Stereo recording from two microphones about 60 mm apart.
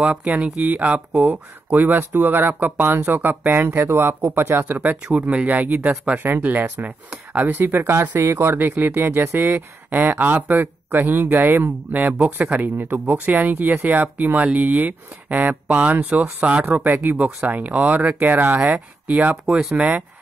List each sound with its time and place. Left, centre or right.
0.0 s speech: centre
7.8 s speech: right
19.4 s speech: centre
19.7 s speech: centre